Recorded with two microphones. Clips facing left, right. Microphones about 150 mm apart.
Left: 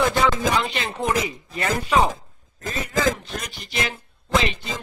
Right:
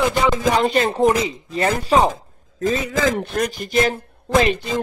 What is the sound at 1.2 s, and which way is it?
Speech, 25° right (ahead or behind).